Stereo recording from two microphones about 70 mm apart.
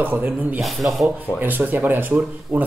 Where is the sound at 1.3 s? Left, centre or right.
Right.